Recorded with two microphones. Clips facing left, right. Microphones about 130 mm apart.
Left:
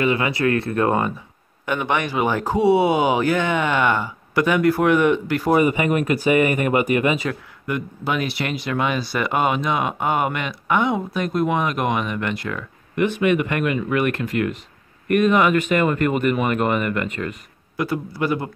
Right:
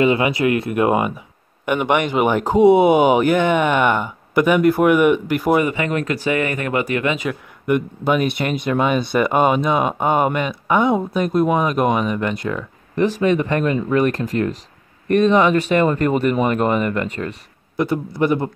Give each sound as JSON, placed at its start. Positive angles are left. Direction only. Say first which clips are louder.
{"t": 0.0, "sound": "speech", "louder": "right 4 dB", "side_deg": -20}
{"t": 5.7, "sound": "speech", "louder": "left 2 dB", "side_deg": 10}
{"t": 7.6, "sound": "speech", "louder": "right 7 dB", "side_deg": -20}
{"t": 12.9, "sound": "speech", "louder": "right 2 dB", "side_deg": -35}
{"t": 17.2, "sound": "speech", "louder": "right 1 dB", "side_deg": -5}
{"t": 17.8, "sound": "speech", "louder": "right 4 dB", "side_deg": -25}